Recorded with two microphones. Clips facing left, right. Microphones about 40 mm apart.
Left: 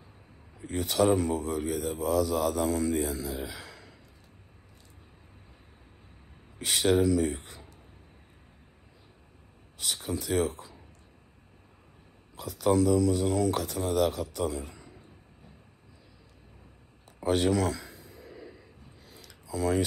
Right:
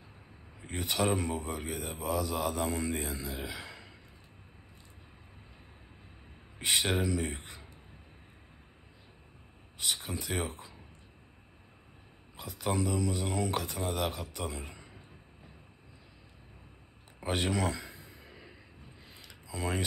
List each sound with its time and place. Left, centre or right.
0.6 s speech: centre
6.6 s speech: centre
9.8 s speech: centre
12.4 s speech: centre
17.2 s a sound: centre
18.9 s tick-tock: right